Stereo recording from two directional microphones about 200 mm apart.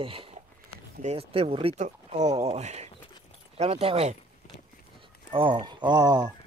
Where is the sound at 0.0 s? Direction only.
25° right (ahead or behind).